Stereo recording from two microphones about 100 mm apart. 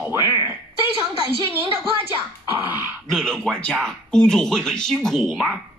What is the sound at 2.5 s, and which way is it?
Dog, 20° right (ahead or behind).